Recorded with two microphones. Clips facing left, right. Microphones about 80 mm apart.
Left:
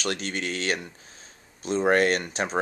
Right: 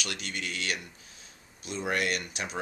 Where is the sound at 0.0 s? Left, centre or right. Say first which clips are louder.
Left 7 dB; left.